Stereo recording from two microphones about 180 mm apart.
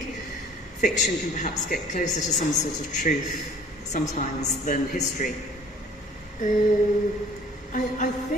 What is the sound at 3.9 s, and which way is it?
A woman's voice, 40° left (ahead or behind).